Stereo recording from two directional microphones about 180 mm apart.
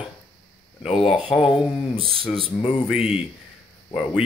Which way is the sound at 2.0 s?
30° right (ahead or behind).